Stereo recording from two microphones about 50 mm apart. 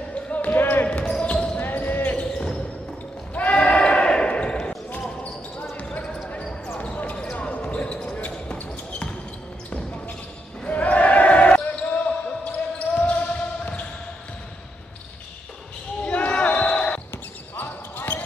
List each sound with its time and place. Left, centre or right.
0.1 s basketball bounce: left
0.8 s basketball bounce: centre
1.6 s basketball bounce: left
2.3 s basketball bounce: centre
3.3 s basketball bounce: left
5.9 s basketball bounce: centre
16.1 s basketball bounce: left
17.6 s basketball bounce: left